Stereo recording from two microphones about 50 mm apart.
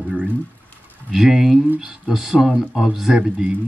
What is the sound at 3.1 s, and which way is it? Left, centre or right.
Speech, centre.